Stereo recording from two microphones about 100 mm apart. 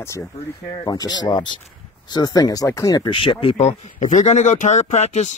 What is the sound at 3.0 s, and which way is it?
Speech, 55° left (ahead or behind).